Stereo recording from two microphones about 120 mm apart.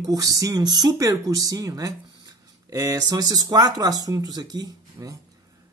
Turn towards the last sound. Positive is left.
turn(degrees=-30)  # may be behind; listen again after turning